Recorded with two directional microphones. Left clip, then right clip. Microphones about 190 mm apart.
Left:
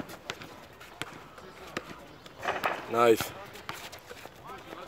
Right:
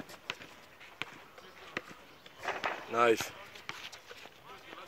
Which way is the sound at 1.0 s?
55° left (ahead or behind).